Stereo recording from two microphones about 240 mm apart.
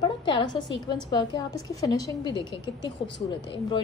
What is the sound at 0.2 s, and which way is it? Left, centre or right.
A woman's voice, centre.